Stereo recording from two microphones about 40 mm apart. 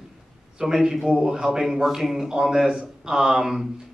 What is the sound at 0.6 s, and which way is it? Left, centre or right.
Speech, centre.